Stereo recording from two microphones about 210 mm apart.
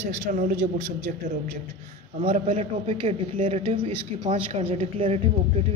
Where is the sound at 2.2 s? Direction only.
25° right (ahead or behind).